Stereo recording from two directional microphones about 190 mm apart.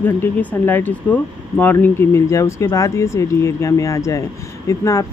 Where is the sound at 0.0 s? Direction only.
10° left (ahead or behind).